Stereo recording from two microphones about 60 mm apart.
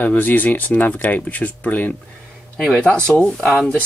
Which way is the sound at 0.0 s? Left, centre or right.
Left.